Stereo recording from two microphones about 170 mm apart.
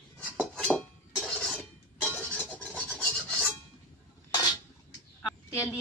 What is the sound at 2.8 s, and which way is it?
Filing, 5° left (ahead or behind).